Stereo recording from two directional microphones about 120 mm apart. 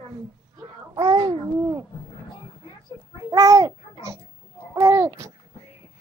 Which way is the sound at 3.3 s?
30° right (ahead or behind).